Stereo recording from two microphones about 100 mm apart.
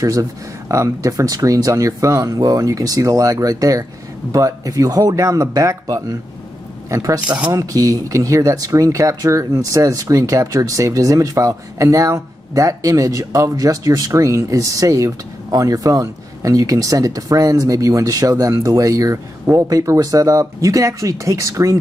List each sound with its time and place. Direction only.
0.0 s a man's voice: 35° right (ahead or behind)